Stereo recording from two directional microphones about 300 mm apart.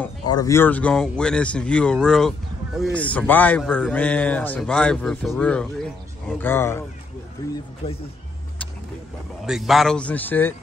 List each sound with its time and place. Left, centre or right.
0.0 s a man's voice: centre
7.8 s speech: centre
9.5 s a man's voice: centre